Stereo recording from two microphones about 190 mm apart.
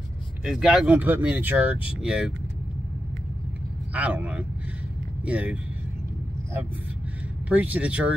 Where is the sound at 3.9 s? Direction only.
5° right (ahead or behind).